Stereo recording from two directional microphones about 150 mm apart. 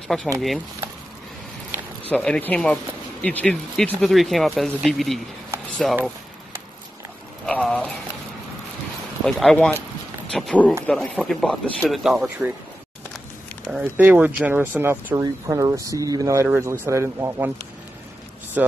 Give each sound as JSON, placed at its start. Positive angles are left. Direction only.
{"t": 0.1, "sound": "speech", "side_deg": 5}
{"t": 1.7, "sound": "a sound", "side_deg": -15}
{"t": 2.0, "sound": "speech", "side_deg": 5}
{"t": 7.4, "sound": "speech", "side_deg": 5}
{"t": 9.2, "sound": "speech", "side_deg": 5}
{"t": 13.7, "sound": "speech", "side_deg": -10}
{"t": 18.6, "sound": "speech", "side_deg": -10}